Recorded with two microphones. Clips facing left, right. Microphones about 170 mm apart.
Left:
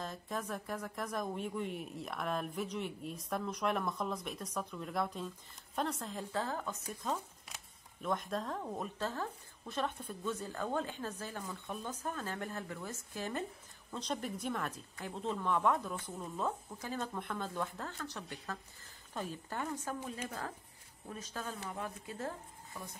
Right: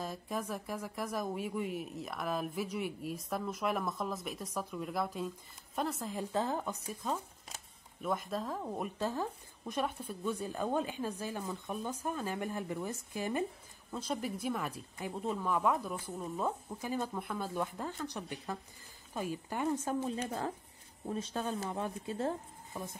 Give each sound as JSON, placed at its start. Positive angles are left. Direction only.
{"t": 0.0, "sound": "speech", "side_deg": -10}
{"t": 6.3, "sound": "speech", "side_deg": -20}
{"t": 6.9, "sound": "a woman's voice", "side_deg": 0}